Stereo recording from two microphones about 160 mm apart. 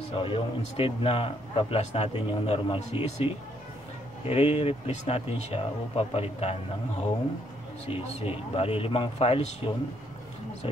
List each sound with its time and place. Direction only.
0.1 s a man's voice: 35° left (ahead or behind)
4.3 s a man's voice: 40° left (ahead or behind)
7.9 s a man's voice: 35° left (ahead or behind)